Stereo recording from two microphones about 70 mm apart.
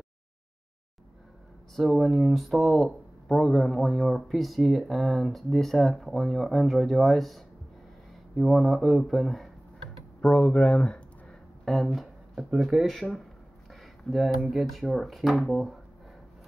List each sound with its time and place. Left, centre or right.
1.8 s speech: centre
10.2 s speech: centre
11.6 s a sound: centre
12.5 s speech: centre
13.7 s a sound: centre
14.4 s speech: centre